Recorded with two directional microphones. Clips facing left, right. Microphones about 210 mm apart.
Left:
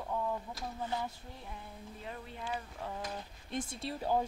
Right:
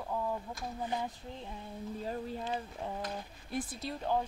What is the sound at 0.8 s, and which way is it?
Speech, 15° right (ahead or behind).